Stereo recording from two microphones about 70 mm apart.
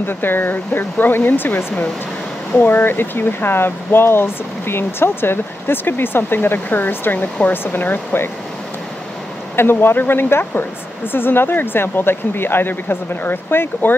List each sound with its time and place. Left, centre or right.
0.0 s speech: left
9.6 s speech: left